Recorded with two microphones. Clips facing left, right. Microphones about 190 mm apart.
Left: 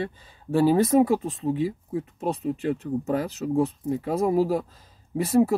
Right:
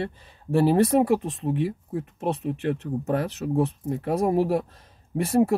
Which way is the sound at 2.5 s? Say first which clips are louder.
Left 1 dB; 60° right (ahead or behind).